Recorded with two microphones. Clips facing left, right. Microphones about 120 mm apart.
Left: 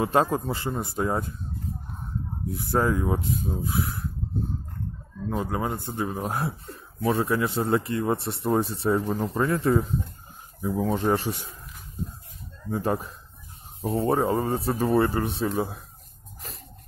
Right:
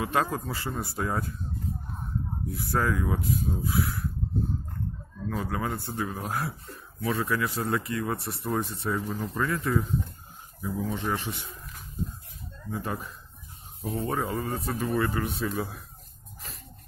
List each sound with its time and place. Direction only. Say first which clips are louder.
0.0 s speech: left 5 dB; 30° left (ahead or behind)
2.5 s speech: left 4 dB; 25° left (ahead or behind)
5.3 s a man's voice: left 3 dB; 25° left (ahead or behind)
10.8 s a man's voice: left 7 dB; 45° left (ahead or behind)
12.7 s a man's voice: left 7 dB; 35° left (ahead or behind)